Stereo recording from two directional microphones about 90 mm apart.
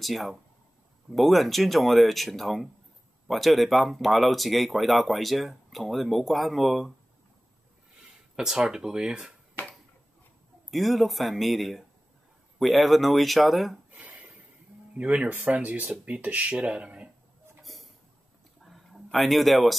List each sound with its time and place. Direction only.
0.0 s speech: centre (ahead or behind)
8.4 s speech: 5° right (ahead or behind)
9.6 s finger snapping: 25° left (ahead or behind)
10.7 s speech: centre (ahead or behind)
14.0 s a sound: 20° right (ahead or behind)
15.0 s speech: 15° right (ahead or behind)
17.6 s a sound: centre (ahead or behind)
19.1 s speech: centre (ahead or behind)